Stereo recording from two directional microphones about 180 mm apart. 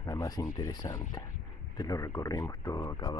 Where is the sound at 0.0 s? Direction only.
20° left (ahead or behind).